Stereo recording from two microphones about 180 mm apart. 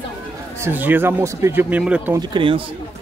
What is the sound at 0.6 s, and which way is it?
Speech, 10° right (ahead or behind).